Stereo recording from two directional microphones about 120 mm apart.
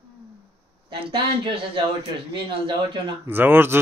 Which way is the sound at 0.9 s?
45° right (ahead or behind).